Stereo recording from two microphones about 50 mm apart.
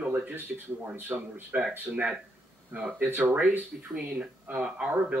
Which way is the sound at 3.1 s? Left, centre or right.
Right.